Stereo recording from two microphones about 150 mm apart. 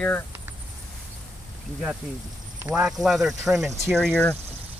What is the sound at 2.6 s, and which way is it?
Speech, 5° right (ahead or behind).